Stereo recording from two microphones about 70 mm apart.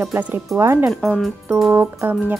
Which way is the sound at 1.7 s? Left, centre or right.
Right.